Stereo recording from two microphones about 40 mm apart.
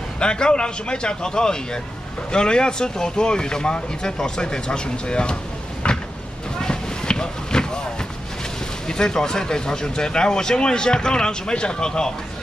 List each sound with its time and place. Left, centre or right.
0.2 s speech: left
5.8 s vehicle: left
8.8 s speech: centre